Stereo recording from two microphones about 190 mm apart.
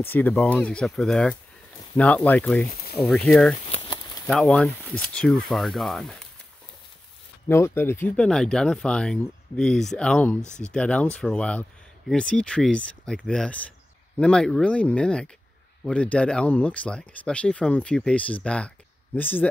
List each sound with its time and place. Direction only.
0.0 s speech: 10° left (ahead or behind)
3.5 s a sound: 30° left (ahead or behind)
4.3 s speech: 5° left (ahead or behind)
7.4 s speech: 15° left (ahead or behind)